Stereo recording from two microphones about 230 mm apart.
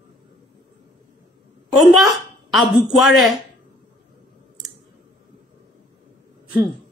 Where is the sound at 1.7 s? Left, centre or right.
Centre.